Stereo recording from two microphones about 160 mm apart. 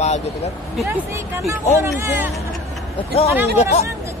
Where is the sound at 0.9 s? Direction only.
15° right (ahead or behind).